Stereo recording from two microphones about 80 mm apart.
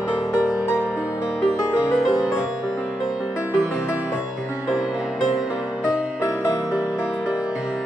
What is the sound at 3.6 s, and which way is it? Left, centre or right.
Music, centre.